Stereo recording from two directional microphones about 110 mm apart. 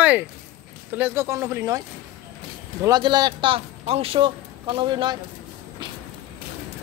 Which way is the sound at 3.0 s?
40° right (ahead or behind).